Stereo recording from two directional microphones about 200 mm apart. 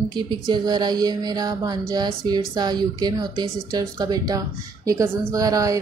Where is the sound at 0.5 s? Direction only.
20° right (ahead or behind).